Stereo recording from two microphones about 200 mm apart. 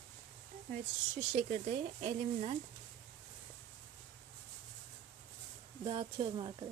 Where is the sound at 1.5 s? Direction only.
35° right (ahead or behind).